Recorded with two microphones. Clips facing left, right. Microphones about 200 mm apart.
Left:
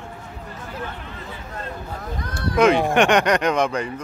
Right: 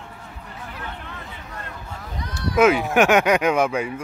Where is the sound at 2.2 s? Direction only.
50° left (ahead or behind).